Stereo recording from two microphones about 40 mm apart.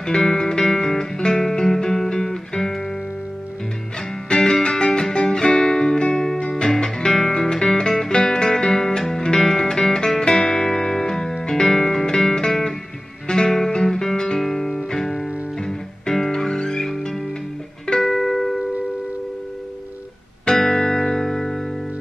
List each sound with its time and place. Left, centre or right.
0.0 s music: centre
4.3 s music: centre
20.4 s music: centre